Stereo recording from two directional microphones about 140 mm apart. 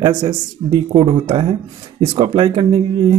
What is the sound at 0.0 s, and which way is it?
Speech, 30° right (ahead or behind).